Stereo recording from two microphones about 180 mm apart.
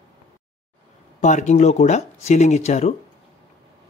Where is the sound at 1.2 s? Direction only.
40° left (ahead or behind).